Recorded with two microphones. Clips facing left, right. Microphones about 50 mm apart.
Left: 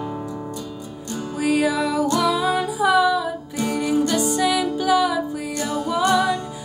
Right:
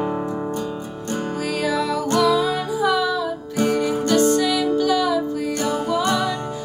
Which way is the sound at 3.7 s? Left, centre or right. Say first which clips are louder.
Left 1 dB; right.